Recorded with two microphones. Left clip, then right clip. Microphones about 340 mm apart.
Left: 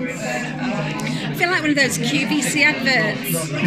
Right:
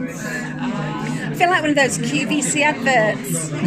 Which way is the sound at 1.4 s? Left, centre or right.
Right.